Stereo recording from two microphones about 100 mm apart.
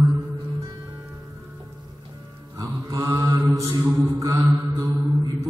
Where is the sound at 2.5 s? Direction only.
35° right (ahead or behind).